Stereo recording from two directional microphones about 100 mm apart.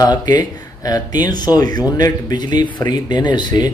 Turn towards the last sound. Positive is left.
turn(degrees=45)  # may be behind; listen again after turning